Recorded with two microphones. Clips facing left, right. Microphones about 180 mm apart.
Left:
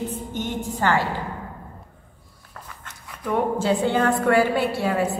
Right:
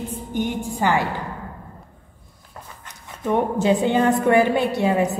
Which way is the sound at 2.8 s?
25° right (ahead or behind).